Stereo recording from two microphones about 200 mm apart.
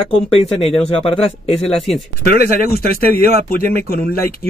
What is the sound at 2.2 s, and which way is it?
Speech, 50° left (ahead or behind).